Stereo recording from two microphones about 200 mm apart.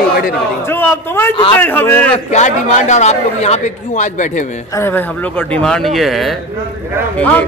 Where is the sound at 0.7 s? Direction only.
10° left (ahead or behind).